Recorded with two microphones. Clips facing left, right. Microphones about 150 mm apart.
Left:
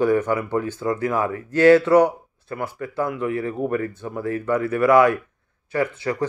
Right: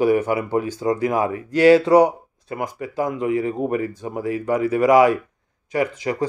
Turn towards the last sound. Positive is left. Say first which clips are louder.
# right 1 dB
turn(degrees=-15)  # may be behind; listen again after turning